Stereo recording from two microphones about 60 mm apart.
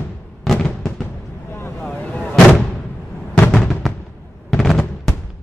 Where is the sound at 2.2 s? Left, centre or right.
Centre.